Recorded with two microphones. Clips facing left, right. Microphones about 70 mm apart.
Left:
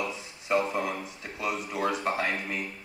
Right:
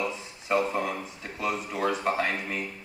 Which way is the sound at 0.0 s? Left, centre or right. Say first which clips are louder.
Right 2 dB; centre.